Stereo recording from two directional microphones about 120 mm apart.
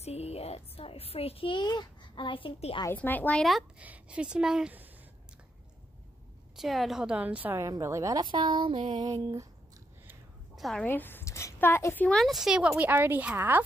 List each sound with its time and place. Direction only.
0.0 s a child's voice: 60° left (ahead or behind)
2.9 s speech: 15° left (ahead or behind)
3.8 s speech: 10° right (ahead or behind)
6.5 s a woman's voice: centre (ahead or behind)
7.5 s a woman's voice: 25° right (ahead or behind)
8.3 s speech: 40° right (ahead or behind)
9.0 s a woman's voice: 30° right (ahead or behind)
10.5 s a sound: centre (ahead or behind)
10.8 s a woman's voice: 15° left (ahead or behind)
12.2 s speech: 5° right (ahead or behind)